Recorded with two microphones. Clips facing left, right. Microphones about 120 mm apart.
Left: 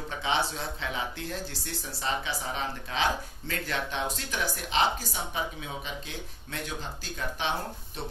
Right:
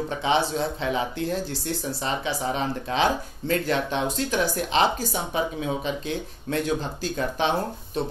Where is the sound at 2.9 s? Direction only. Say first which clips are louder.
Right 5 dB; 30° right (ahead or behind).